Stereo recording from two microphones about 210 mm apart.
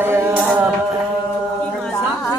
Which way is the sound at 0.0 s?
10° right (ahead or behind).